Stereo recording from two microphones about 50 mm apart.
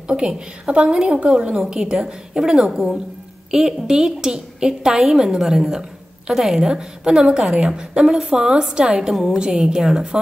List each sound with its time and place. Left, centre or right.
0.7 s a woman's voice: centre
9.4 s a woman's voice: centre